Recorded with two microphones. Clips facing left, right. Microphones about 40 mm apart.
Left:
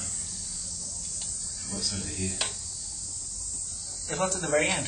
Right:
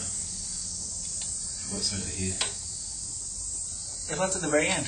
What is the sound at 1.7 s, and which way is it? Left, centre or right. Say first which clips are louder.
Speech: even; centre.